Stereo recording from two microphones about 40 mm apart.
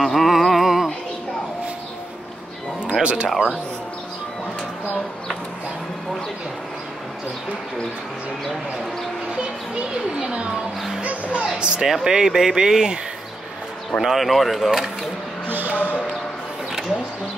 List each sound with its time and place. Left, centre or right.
0.0 s a sound: centre
3.0 s speech: right
3.3 s speech: centre
9.3 s music: right
11.0 s music: right
11.4 s a sound: right
11.9 s speech: centre
14.0 s speech: centre
15.4 s a sound: right